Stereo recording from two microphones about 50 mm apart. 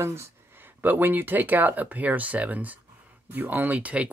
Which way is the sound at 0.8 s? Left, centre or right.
Right.